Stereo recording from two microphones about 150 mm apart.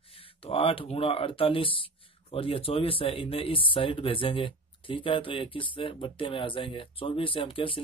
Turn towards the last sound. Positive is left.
turn(degrees=35)  # may be behind; listen again after turning